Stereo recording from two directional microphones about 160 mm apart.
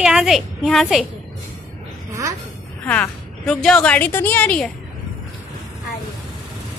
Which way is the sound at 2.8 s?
10° left (ahead or behind).